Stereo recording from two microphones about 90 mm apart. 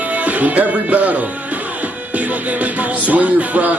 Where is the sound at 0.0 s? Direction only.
15° right (ahead or behind).